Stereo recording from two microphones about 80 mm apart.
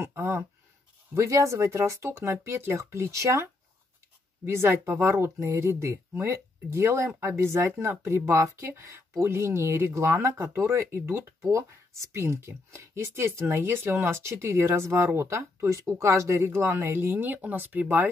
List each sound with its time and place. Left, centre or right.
0.0 s speech: right
4.5 s speech: right